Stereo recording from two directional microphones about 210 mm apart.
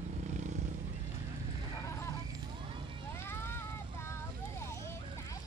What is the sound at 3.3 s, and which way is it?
Vehicle, 10° left (ahead or behind).